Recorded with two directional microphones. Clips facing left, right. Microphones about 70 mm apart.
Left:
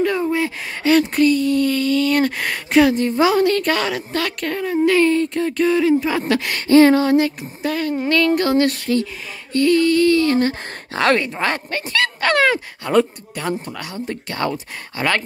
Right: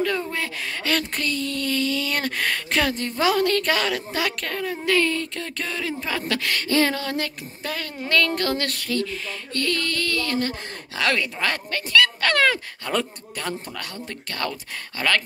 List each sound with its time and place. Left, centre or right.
0.0 s speech: centre
5.0 s speech: left
5.6 s speech: centre
7.6 s speech: centre
11.0 s speech: left
12.8 s speech: centre
13.9 s speech: left